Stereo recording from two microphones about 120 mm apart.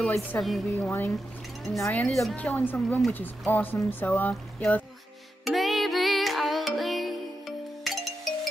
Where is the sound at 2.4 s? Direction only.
15° left (ahead or behind).